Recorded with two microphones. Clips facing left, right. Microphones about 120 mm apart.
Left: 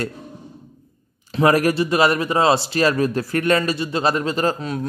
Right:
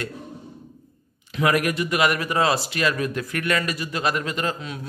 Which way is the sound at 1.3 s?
35° left (ahead or behind).